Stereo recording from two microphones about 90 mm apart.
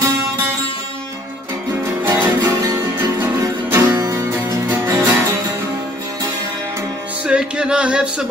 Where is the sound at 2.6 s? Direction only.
40° right (ahead or behind).